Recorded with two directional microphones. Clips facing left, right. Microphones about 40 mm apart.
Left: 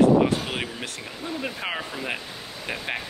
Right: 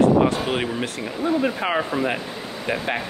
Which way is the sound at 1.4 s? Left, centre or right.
Centre.